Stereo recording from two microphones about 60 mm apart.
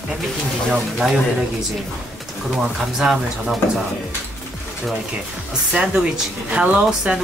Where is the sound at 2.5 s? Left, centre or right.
Centre.